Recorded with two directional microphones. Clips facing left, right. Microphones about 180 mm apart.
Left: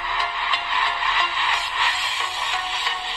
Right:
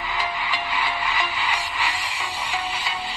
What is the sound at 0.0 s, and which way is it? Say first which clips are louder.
Music: right 1 dB; 5° right (ahead or behind).